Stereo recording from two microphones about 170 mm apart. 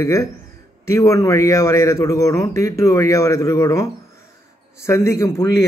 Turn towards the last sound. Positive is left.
turn(degrees=15)  # may be behind; listen again after turning